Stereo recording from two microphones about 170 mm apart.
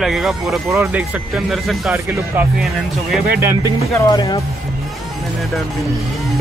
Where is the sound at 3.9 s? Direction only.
20° left (ahead or behind).